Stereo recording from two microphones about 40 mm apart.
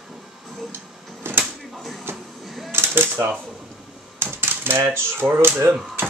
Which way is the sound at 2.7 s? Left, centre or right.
Right.